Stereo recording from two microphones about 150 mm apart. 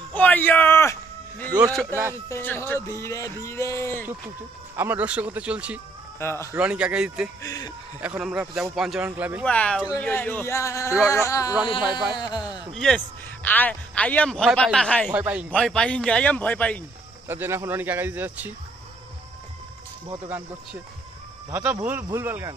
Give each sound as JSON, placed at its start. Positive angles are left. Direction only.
{"t": 0.1, "sound": "a sound", "side_deg": 10}
{"t": 1.6, "sound": "speech", "side_deg": 0}
{"t": 2.2, "sound": "a man's voice", "side_deg": 15}
{"t": 4.7, "sound": "speech", "side_deg": -10}
{"t": 6.1, "sound": "speech", "side_deg": 15}
{"t": 6.5, "sound": "speech", "side_deg": -5}
{"t": 7.4, "sound": "speech", "side_deg": 25}
{"t": 8.0, "sound": "speech", "side_deg": -10}
{"t": 9.4, "sound": "a man's voice", "side_deg": 5}
{"t": 12.7, "sound": "a man's voice", "side_deg": 5}
{"t": 15.1, "sound": "speech", "side_deg": -10}
{"t": 15.5, "sound": "a man's voice", "side_deg": 5}
{"t": 17.3, "sound": "speech", "side_deg": -15}
{"t": 21.5, "sound": "speech", "side_deg": -20}